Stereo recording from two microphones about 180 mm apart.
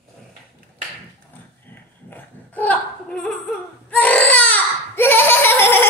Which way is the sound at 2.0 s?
10° left (ahead or behind).